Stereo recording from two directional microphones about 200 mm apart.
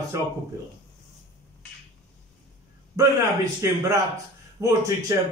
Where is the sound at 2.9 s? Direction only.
20° right (ahead or behind).